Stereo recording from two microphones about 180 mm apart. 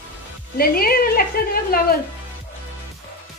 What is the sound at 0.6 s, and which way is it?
A woman's voice, 55° left (ahead or behind).